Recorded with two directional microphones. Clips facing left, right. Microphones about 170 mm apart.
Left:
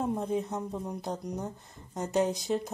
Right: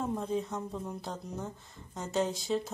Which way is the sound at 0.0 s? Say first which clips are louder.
Left 2 dB; 20° left (ahead or behind).